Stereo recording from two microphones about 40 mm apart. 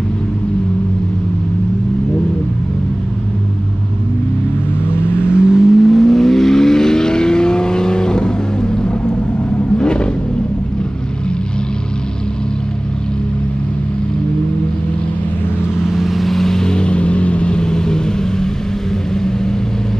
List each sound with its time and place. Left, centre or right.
4.8 s vehicle: left
5.3 s vehicle: centre
5.7 s vehicle: centre; by 10.0 s left
15.8 s vehicle: centre